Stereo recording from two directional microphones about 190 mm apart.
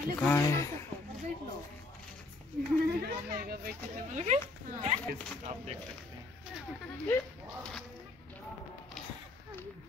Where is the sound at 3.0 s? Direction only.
55° right (ahead or behind).